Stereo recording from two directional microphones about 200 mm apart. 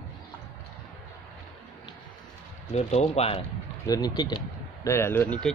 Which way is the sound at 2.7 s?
30° left (ahead or behind).